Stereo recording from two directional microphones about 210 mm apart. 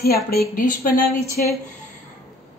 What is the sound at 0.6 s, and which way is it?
Speech, 40° left (ahead or behind).